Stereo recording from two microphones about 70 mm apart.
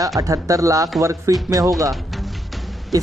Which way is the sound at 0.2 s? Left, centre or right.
Right.